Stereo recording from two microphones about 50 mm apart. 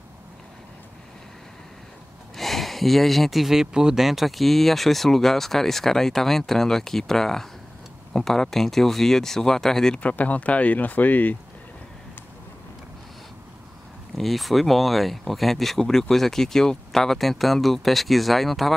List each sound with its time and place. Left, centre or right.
2.3 s speech: centre
9.9 s speech: left
14.1 s speech: centre